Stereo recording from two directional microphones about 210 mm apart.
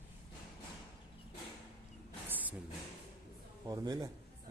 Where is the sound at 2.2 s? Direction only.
10° right (ahead or behind).